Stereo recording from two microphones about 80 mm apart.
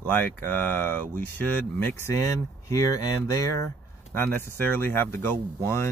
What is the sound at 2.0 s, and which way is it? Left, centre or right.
Speech, left.